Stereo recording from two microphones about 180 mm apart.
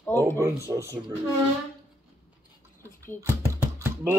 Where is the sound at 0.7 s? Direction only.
15° right (ahead or behind).